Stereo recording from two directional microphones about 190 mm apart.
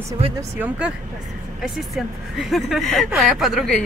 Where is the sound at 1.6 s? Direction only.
Centre (ahead or behind).